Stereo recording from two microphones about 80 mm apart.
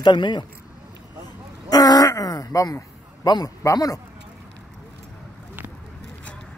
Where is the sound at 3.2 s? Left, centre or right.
Left.